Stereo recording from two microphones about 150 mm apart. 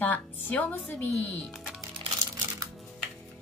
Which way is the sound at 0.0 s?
10° left (ahead or behind).